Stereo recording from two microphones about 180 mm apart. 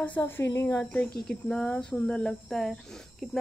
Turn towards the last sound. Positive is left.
turn(degrees=0)  # may be behind; listen again after turning